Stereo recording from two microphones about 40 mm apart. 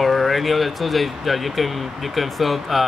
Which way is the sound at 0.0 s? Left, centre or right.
Centre.